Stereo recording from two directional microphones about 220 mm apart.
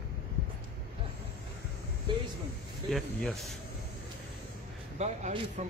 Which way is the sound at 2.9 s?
Centre (ahead or behind).